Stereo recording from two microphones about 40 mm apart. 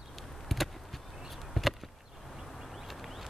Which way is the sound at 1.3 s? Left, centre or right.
Centre.